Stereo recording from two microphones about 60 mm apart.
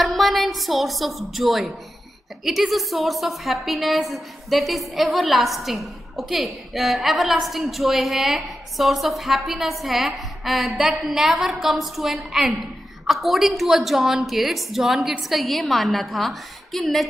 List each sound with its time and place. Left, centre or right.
0.0 s a woman's voice: centre